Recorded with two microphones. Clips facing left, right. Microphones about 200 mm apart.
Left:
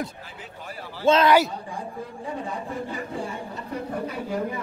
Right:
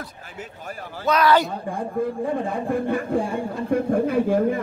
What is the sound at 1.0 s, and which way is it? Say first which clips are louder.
Speech: left 1 dB; 25° left (ahead or behind).